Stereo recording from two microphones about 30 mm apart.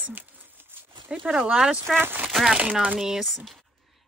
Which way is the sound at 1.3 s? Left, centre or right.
Right.